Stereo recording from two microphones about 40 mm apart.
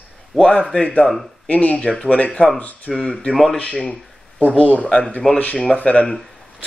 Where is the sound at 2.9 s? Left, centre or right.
Centre.